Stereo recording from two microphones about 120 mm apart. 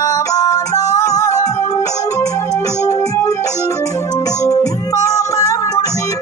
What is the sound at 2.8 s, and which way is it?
Music, 25° left (ahead or behind).